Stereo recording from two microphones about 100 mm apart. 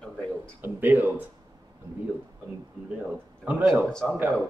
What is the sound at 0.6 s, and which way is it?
Speech, 20° right (ahead or behind).